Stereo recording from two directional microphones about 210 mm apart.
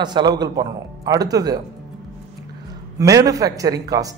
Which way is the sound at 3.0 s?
15° right (ahead or behind).